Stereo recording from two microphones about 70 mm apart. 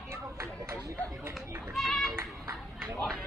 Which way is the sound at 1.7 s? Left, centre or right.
Centre.